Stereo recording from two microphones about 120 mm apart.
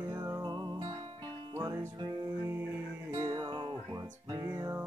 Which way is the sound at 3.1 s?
25° right (ahead or behind).